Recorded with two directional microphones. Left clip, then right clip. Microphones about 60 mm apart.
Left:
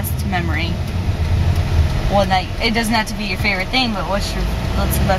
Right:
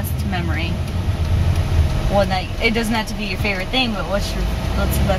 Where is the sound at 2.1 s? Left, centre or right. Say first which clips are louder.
Left 3 dB; centre.